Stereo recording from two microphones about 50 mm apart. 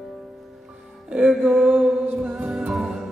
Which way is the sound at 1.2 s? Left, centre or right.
Right.